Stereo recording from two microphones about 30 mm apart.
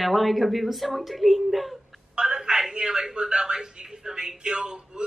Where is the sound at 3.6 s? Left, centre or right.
Right.